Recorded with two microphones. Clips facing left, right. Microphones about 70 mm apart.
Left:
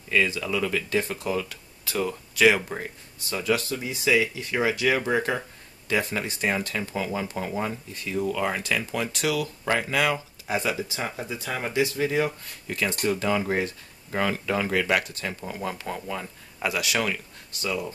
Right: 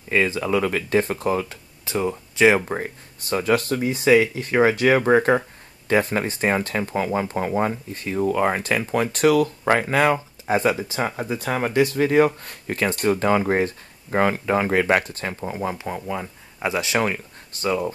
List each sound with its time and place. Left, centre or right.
0.1 s speech: right
1.9 s speech: right